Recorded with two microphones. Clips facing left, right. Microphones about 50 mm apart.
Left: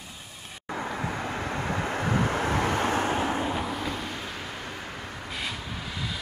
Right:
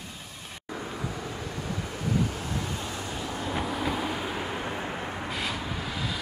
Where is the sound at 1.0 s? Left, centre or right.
Left.